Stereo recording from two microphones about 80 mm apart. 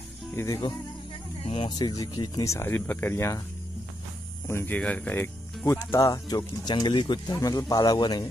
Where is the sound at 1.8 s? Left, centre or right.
Left.